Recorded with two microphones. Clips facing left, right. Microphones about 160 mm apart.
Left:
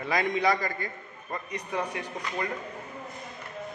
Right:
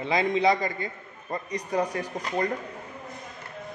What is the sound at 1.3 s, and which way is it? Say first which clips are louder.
Speech: right 5 dB; 40° right (ahead or behind).